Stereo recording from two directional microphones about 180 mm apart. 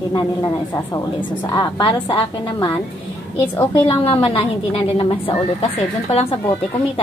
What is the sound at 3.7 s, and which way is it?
A woman's voice, 30° left (ahead or behind).